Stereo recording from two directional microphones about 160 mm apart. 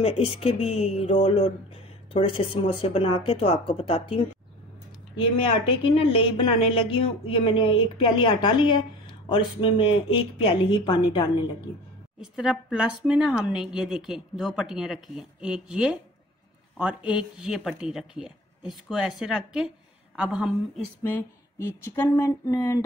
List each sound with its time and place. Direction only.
0.0 s speech: 40° left (ahead or behind)
12.2 s a woman's voice: 5° right (ahead or behind)
20.7 s a sound: 10° left (ahead or behind)